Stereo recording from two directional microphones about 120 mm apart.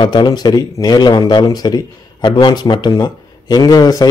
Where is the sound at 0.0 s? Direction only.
40° left (ahead or behind).